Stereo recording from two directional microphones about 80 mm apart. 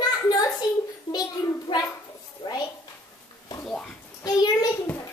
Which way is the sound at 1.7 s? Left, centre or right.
Left.